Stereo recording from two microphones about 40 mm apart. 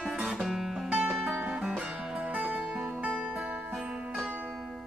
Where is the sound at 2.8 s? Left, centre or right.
Right.